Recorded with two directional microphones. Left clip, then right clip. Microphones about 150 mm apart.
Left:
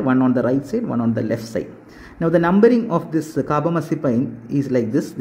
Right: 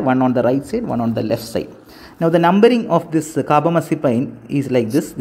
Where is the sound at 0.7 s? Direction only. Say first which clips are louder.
Right 2 dB; 10° right (ahead or behind).